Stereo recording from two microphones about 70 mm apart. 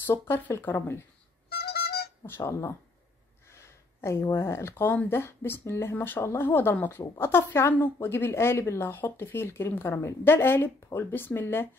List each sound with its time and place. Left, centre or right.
0.1 s speech: left
2.2 s speech: left
3.4 s a sound: left
5.1 s speech: left